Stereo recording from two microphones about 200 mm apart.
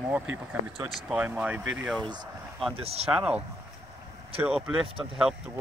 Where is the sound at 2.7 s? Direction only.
30° right (ahead or behind).